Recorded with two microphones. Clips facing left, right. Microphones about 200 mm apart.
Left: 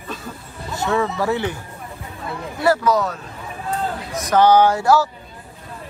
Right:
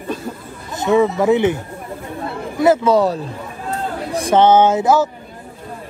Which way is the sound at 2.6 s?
25° right (ahead or behind).